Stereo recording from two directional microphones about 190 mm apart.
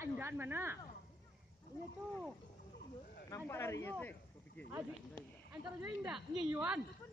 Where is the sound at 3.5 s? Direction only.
15° left (ahead or behind).